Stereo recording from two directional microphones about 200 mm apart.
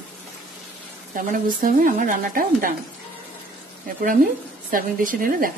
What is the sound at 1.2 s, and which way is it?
Speech, 45° right (ahead or behind).